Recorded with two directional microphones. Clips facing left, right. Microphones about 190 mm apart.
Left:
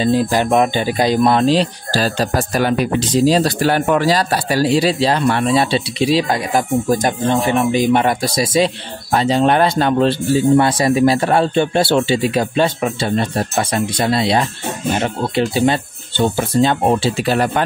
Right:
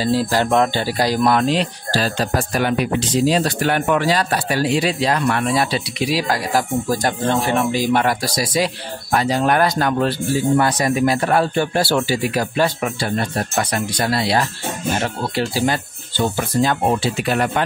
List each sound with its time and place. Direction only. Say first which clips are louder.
0.0 s speech: left 3 dB; 20° left (ahead or behind)